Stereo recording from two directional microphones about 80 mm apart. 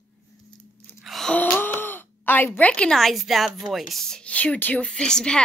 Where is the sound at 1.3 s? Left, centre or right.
Centre.